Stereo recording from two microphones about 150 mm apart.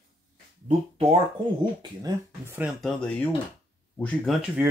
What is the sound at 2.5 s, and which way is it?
Speech, 10° right (ahead or behind).